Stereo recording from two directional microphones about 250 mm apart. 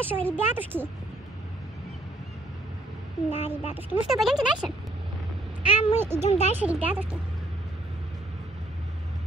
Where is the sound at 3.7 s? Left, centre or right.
Centre.